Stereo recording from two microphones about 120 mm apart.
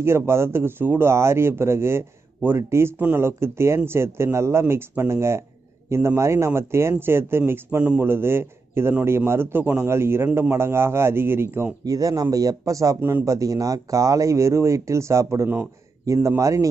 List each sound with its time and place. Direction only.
0.0 s speech: 20° right (ahead or behind)